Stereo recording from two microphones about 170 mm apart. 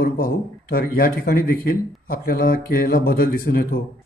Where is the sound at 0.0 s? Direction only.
60° left (ahead or behind).